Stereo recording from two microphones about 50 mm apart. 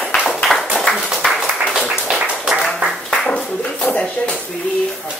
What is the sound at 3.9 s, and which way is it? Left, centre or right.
Speech, left.